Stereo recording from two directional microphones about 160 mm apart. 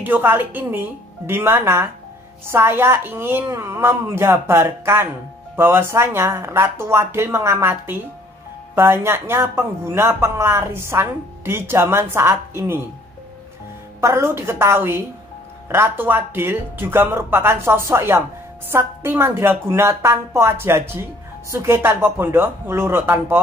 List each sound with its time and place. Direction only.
0.0 s a woman's voice: 10° right (ahead or behind)
14.0 s a woman's voice: 15° right (ahead or behind)